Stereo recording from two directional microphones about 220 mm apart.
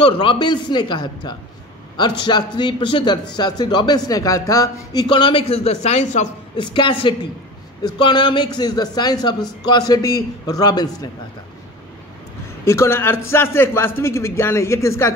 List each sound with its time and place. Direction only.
0.0 s a man's voice: 20° left (ahead or behind)
12.6 s a man's voice: 10° left (ahead or behind)